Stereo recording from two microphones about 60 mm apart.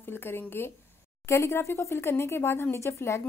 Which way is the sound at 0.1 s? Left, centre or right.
Left.